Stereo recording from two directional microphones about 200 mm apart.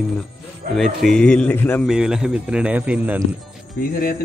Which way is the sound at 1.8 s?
5° right (ahead or behind).